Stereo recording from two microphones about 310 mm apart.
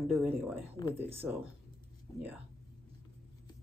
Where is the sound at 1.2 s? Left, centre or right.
Centre.